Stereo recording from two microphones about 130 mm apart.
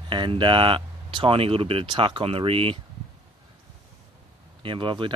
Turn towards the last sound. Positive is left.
turn(degrees=-40)  # may be behind; listen again after turning